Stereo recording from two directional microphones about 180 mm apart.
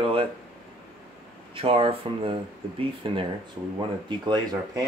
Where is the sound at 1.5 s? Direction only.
30° right (ahead or behind).